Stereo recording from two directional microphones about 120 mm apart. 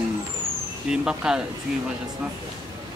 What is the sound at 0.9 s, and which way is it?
Speech, 5° right (ahead or behind).